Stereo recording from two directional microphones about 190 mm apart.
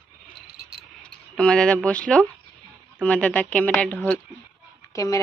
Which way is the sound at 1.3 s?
5° left (ahead or behind).